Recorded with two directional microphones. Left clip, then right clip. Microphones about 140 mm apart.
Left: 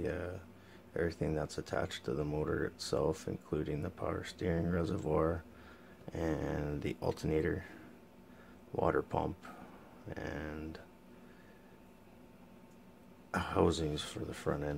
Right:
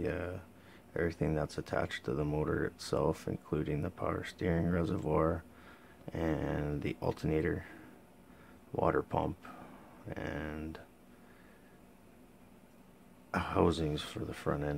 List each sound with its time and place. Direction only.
0.0 s a sound: 15° right (ahead or behind)
0.9 s speech: 15° right (ahead or behind)
8.7 s speech: 15° right (ahead or behind)
13.3 s speech: 15° right (ahead or behind)